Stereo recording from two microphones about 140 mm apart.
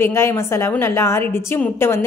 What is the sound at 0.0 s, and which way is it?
A woman's voice, 20° left (ahead or behind).